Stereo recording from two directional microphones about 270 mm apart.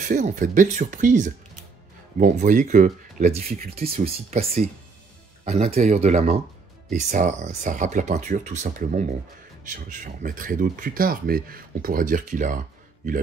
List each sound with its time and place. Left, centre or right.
0.1 s speech: right
3.9 s speech: right